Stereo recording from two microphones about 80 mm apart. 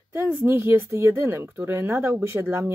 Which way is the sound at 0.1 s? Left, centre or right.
Right.